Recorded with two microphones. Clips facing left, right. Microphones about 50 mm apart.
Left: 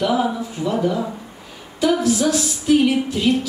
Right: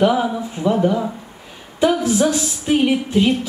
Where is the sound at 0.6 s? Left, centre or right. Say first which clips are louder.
Right 4 dB; centre.